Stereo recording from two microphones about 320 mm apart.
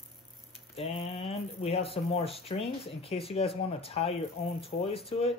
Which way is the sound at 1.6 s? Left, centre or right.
Centre.